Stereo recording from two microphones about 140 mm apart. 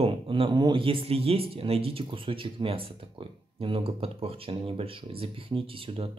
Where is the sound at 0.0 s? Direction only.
40° right (ahead or behind).